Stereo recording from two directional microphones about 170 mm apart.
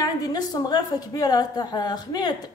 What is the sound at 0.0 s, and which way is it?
A woman's voice, 20° left (ahead or behind).